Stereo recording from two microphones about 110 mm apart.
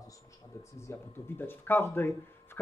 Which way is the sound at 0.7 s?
25° left (ahead or behind).